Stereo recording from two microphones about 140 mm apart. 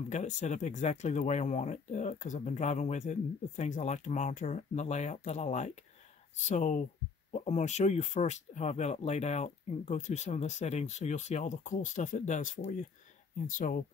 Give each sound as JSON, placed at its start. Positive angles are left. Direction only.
{"t": 0.1, "sound": "speech", "side_deg": 55}